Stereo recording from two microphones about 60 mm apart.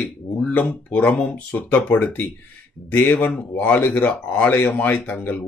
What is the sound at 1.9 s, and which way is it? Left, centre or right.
Speech, left.